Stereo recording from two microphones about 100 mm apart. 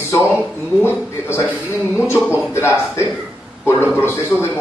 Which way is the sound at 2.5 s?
25° left (ahead or behind).